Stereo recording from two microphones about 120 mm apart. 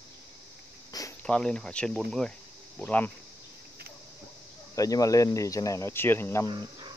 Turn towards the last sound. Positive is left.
turn(degrees=-35)  # may be behind; listen again after turning